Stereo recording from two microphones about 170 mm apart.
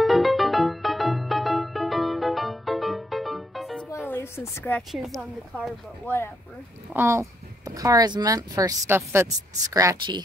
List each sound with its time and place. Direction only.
0.0 s music: centre (ahead or behind)
3.9 s a sound: 15° left (ahead or behind)
4.9 s speech: centre (ahead or behind)
6.9 s speech: 15° right (ahead or behind)